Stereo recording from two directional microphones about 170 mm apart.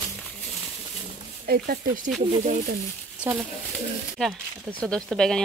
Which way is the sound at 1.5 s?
65° right (ahead or behind).